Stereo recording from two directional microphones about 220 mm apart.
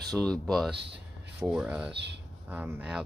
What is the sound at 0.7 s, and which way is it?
Speech, 50° right (ahead or behind).